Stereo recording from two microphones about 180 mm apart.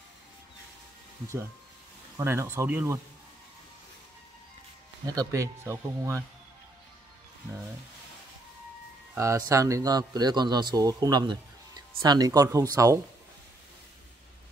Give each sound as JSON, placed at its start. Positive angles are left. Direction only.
{"t": 2.1, "sound": "speech", "side_deg": -15}
{"t": 5.0, "sound": "speech", "side_deg": -20}
{"t": 9.1, "sound": "speech", "side_deg": -15}